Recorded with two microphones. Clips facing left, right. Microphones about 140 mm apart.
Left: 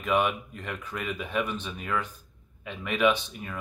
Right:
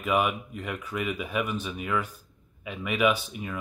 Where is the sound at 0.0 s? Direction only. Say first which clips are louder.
Even; 5° right (ahead or behind).